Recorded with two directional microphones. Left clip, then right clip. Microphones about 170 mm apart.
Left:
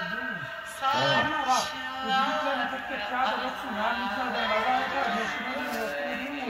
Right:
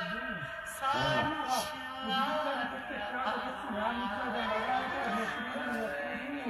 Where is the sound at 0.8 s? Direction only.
10° right (ahead or behind).